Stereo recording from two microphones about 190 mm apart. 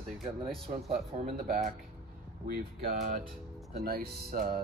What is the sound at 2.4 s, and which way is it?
Speech, 50° right (ahead or behind).